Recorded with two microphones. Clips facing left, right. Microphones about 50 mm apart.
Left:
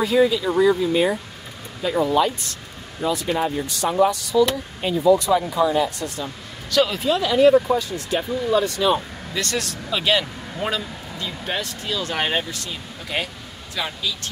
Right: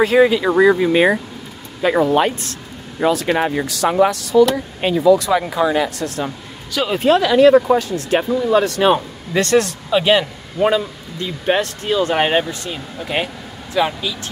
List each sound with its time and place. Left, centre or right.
0.0 s speech: right
3.0 s speech: right
7.0 s speech: right
9.3 s speech: right
9.8 s a man's voice: centre
11.4 s speech: right